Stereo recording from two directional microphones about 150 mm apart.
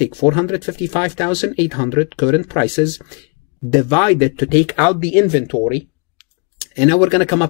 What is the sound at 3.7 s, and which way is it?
Speech, 30° left (ahead or behind).